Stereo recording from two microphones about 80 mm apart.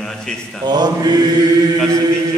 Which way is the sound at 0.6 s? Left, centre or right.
Right.